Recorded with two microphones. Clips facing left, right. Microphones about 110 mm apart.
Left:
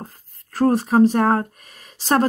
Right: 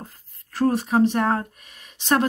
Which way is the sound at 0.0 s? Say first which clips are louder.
Left 4 dB; 40° left (ahead or behind).